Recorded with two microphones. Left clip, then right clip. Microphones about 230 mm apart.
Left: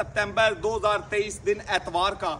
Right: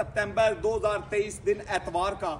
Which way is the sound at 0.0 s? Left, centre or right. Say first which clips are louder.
Left 2 dB; centre.